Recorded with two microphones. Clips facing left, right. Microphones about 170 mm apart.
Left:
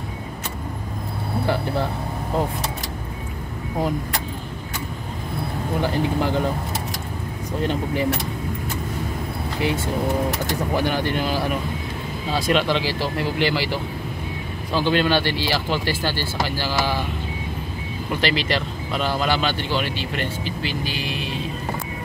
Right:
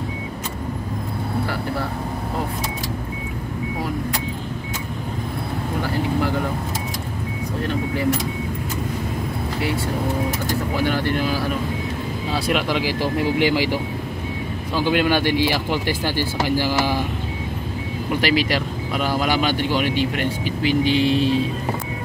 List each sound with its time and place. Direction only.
5.9 s speech: 20° left (ahead or behind)
7.6 s speech: 20° left (ahead or behind)
10.9 s speech: 20° left (ahead or behind)
12.3 s speech: centre (ahead or behind)
18.2 s speech: 10° right (ahead or behind); by 21.4 s 30° right (ahead or behind)